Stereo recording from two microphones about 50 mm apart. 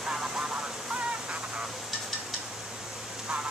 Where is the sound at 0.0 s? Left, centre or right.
Centre.